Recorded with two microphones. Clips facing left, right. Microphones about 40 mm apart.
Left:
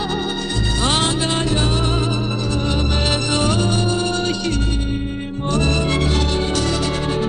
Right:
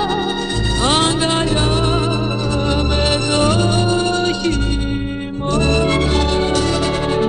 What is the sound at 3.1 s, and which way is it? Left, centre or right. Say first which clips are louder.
Music: right 4 dB; right.